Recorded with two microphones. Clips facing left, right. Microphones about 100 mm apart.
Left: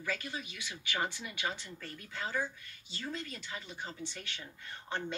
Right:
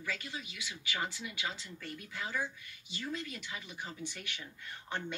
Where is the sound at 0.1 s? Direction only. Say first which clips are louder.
Left 3 dB; 30° left (ahead or behind).